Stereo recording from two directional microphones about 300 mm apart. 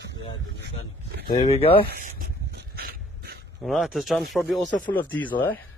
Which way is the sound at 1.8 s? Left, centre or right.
Right.